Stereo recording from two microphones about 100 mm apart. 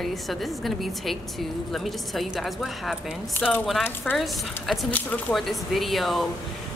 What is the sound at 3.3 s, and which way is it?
Speech, 15° left (ahead or behind).